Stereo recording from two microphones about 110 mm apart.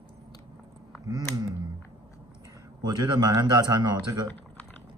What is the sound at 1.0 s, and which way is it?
Speech, 35° right (ahead or behind).